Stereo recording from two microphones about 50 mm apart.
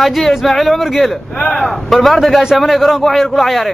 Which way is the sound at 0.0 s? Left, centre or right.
Centre.